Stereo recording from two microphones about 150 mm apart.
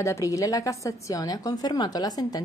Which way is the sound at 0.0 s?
20° left (ahead or behind).